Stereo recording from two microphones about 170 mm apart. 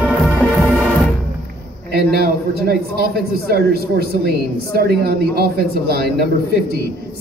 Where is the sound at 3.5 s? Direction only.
70° right (ahead or behind).